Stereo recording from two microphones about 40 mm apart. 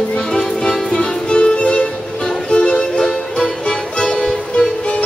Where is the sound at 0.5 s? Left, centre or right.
Centre.